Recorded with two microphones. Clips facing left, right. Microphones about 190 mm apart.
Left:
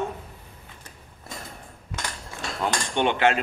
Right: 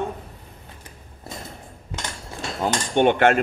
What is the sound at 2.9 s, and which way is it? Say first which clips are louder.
Cutlery: right 5 dB; 50° right (ahead or behind).